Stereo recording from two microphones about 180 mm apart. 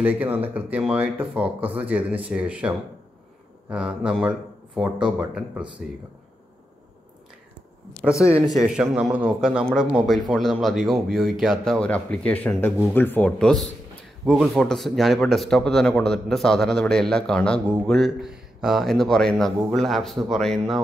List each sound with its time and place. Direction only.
0.0 s a man's voice: 10° right (ahead or behind)
8.1 s speech: 15° left (ahead or behind)
8.6 s a man's voice: 5° right (ahead or behind)